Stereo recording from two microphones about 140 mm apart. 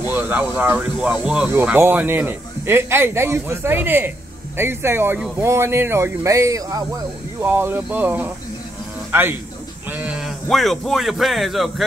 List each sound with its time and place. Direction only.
0.0 s a man's voice: 15° right (ahead or behind)